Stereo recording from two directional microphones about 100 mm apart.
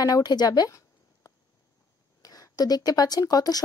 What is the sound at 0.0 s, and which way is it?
Speech, 40° left (ahead or behind).